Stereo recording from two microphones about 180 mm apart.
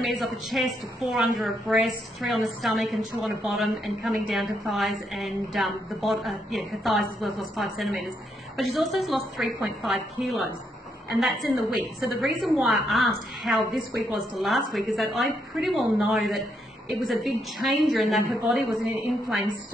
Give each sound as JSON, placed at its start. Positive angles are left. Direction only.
{"t": 0.0, "sound": "a woman's voice", "side_deg": 0}